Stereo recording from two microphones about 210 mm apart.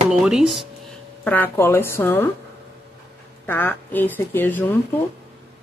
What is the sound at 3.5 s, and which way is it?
Speech, 10° left (ahead or behind).